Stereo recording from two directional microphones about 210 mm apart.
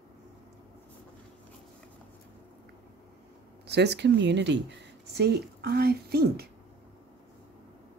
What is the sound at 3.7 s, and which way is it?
Speech, 55° right (ahead or behind).